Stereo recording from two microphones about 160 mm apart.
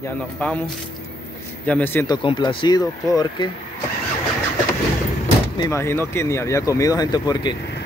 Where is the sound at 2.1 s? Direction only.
30° left (ahead or behind).